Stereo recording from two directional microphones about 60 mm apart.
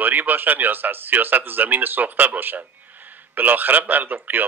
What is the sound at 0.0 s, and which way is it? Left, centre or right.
Speech, right.